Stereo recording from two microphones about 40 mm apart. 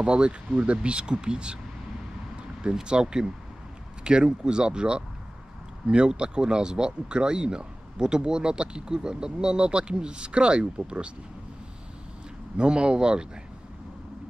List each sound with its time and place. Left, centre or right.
0.0 s speech: right
2.6 s speech: right
12.5 s speech: right